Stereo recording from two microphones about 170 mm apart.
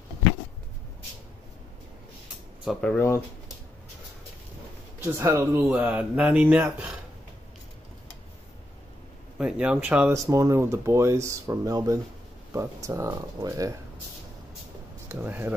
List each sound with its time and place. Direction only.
2.6 s speech: centre (ahead or behind)
5.0 s speech: 15° right (ahead or behind)
9.4 s speech: 5° right (ahead or behind)
10.1 s speech: 20° right (ahead or behind)
15.0 s speech: 10° right (ahead or behind)